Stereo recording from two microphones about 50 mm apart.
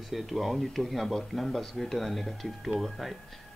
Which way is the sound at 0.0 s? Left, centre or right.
Centre.